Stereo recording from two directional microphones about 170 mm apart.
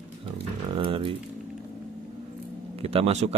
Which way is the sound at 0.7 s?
30° right (ahead or behind).